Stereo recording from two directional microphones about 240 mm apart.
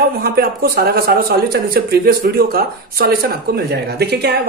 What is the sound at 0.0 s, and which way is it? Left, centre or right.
Speech, right.